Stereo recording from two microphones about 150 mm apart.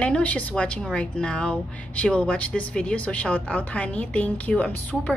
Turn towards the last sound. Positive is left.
turn(degrees=10)  # may be behind; listen again after turning